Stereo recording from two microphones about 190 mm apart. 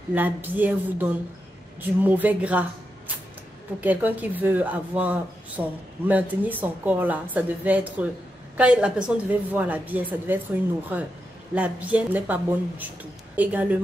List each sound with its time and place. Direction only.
0.1 s speech: 10° right (ahead or behind)
3.8 s speech: 10° right (ahead or behind)